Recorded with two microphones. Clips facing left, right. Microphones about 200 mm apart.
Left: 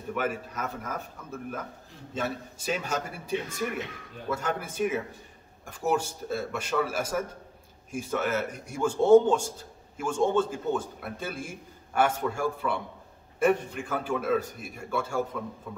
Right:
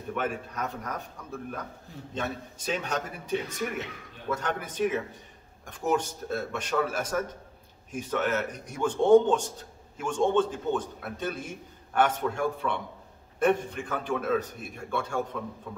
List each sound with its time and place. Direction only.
0.1 s a man's voice: 5° left (ahead or behind)